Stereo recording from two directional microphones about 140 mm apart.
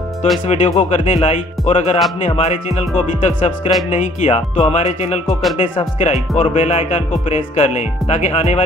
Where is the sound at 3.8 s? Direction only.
55° left (ahead or behind).